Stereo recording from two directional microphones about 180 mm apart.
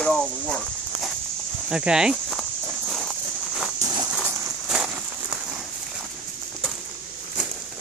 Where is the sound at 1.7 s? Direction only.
5° right (ahead or behind).